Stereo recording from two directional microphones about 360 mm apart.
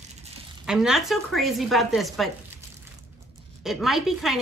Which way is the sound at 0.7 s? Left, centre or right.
Centre.